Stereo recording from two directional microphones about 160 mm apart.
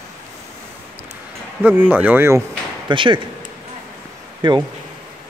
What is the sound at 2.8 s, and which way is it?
Speech, 30° right (ahead or behind).